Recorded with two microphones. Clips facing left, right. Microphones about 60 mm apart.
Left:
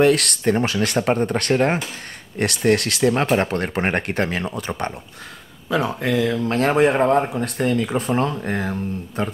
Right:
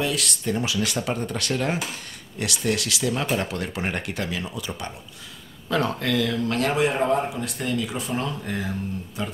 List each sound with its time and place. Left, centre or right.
0.0 s speech: left
5.7 s speech: centre; by 9.3 s left